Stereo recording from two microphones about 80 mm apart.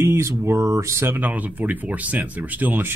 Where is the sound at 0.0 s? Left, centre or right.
Right.